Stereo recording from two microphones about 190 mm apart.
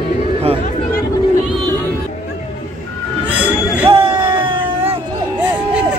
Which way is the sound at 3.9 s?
25° right (ahead or behind).